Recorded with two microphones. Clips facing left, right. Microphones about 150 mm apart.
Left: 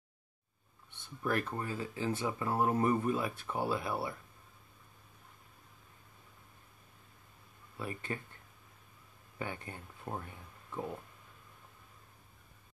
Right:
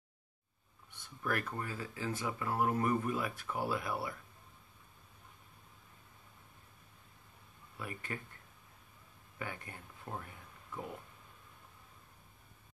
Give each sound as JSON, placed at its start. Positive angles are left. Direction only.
{"t": 0.9, "sound": "speech", "side_deg": 25}
{"t": 7.8, "sound": "speech", "side_deg": 25}
{"t": 9.4, "sound": "speech", "side_deg": 25}